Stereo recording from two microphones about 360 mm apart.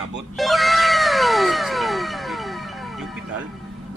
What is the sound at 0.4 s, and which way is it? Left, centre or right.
Cat, centre.